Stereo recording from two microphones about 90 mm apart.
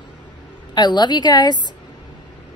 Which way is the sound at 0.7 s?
55° left (ahead or behind).